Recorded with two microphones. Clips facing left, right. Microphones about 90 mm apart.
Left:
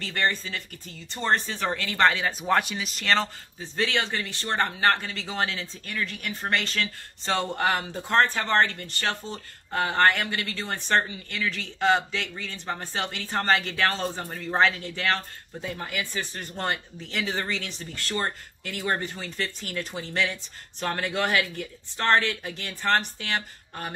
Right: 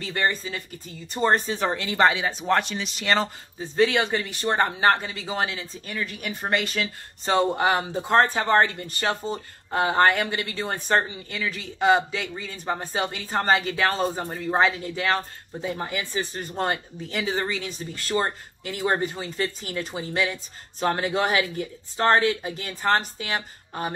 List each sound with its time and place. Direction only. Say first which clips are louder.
0.0 s speech: right 2 dB; 15° right (ahead or behind)
3.5 s speech: right 6 dB; 15° right (ahead or behind)
15.7 s speech: right 3 dB; 25° right (ahead or behind)